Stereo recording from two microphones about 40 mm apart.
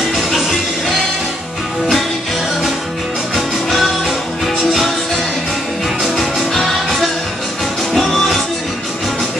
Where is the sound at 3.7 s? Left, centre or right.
Centre.